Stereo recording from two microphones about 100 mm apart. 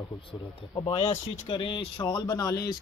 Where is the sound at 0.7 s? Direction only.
60° left (ahead or behind); by 1.4 s 90° left.